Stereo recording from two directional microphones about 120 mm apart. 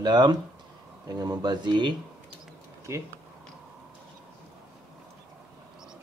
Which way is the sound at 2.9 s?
25° right (ahead or behind).